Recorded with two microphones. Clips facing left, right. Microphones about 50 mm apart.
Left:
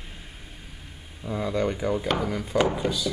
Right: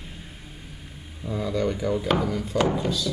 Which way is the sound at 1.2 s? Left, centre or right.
Centre.